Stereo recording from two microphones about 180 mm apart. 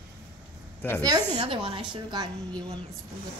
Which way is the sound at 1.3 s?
25° right (ahead or behind).